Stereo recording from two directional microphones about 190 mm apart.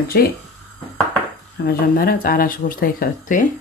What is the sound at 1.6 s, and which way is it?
Speech, 50° left (ahead or behind).